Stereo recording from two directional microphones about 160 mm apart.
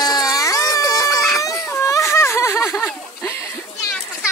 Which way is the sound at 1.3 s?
20° left (ahead or behind).